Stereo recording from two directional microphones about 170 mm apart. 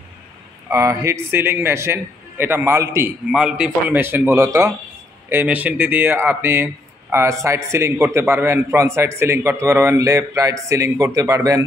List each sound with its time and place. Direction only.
0.7 s speech: 15° right (ahead or behind)
3.3 s speech: 5° right (ahead or behind); by 11.6 s 20° right (ahead or behind)